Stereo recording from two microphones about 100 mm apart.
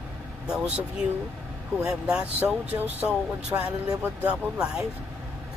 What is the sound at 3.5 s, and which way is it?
Speech, 30° right (ahead or behind).